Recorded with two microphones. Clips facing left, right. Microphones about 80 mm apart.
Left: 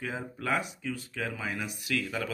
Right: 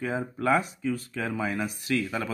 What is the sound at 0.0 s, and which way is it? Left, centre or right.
A man's voice, right.